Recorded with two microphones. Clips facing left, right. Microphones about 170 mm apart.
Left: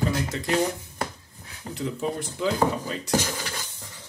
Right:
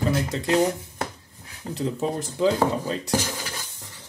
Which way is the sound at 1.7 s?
35° right (ahead or behind).